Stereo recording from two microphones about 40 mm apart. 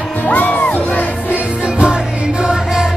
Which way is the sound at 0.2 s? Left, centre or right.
Left.